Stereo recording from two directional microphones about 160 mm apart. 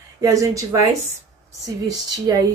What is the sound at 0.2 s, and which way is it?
Speech, 20° right (ahead or behind).